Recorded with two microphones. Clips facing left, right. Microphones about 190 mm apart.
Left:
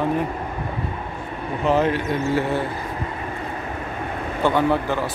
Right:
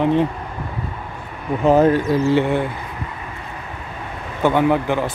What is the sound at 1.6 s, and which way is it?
Speech, 40° right (ahead or behind).